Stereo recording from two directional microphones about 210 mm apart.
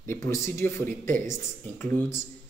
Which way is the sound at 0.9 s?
40° right (ahead or behind).